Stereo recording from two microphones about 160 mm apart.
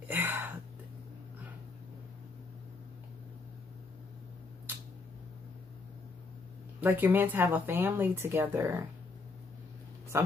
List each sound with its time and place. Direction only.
0.1 s a sound: 15° right (ahead or behind)
6.8 s speech: 15° right (ahead or behind)
10.1 s speech: 15° right (ahead or behind)